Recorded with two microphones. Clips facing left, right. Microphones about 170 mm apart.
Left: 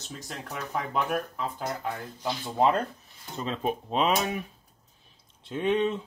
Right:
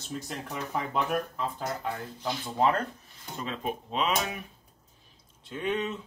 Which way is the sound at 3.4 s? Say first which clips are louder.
Left 4 dB; 35° left (ahead or behind).